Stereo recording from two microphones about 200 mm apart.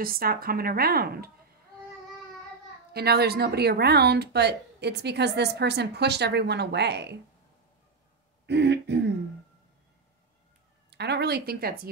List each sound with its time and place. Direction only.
0.0 s speech: 45° right (ahead or behind)
2.9 s speech: 55° right (ahead or behind)
8.5 s speech: 60° right (ahead or behind)
10.9 s speech: 55° right (ahead or behind)